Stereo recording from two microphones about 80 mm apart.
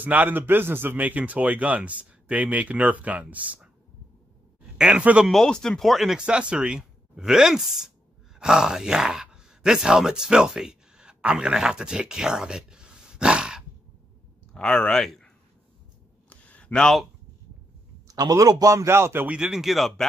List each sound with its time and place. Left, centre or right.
0.0 s a man's voice: right
4.7 s speech: centre
5.3 s speech: centre
14.5 s speech: centre
16.3 s a sound: centre
18.0 s a man's voice: right
19.2 s speech: centre